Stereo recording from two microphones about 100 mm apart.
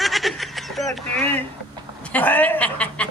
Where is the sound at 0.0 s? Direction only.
Centre (ahead or behind).